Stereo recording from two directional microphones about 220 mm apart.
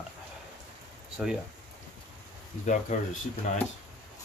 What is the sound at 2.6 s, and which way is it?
Speech, 35° left (ahead or behind).